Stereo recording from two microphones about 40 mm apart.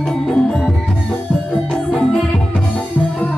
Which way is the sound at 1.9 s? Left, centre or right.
Left.